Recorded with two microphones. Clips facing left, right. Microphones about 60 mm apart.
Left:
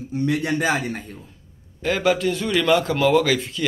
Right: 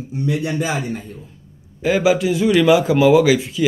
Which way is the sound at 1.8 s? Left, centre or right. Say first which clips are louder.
Right 4 dB; centre.